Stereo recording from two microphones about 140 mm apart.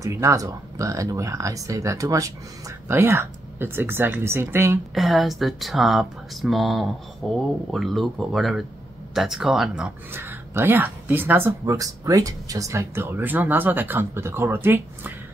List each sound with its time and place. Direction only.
0.0 s speech: 20° right (ahead or behind)
4.9 s speech: centre (ahead or behind)
10.1 s speech: 15° right (ahead or behind)